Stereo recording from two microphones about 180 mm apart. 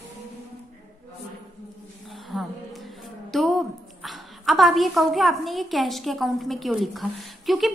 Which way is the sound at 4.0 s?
Centre (ahead or behind).